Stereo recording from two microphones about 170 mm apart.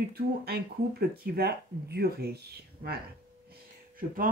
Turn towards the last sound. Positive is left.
turn(degrees=-55)  # may be behind; listen again after turning